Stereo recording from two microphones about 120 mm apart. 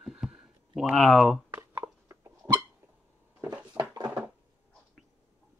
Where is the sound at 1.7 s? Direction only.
20° right (ahead or behind).